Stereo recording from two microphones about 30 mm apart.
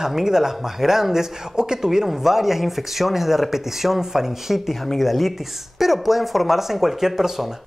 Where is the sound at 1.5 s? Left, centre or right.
Right.